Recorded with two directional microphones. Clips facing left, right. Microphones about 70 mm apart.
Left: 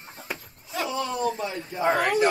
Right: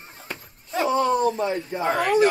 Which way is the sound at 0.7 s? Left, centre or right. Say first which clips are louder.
Right 7 dB; right.